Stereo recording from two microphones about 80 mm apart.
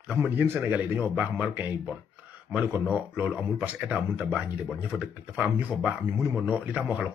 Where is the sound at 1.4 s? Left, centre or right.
Right.